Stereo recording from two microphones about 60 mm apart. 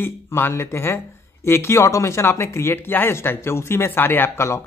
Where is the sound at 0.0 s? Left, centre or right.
Left.